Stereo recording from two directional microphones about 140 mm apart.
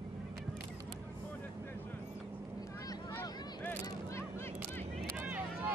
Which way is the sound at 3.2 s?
20° left (ahead or behind).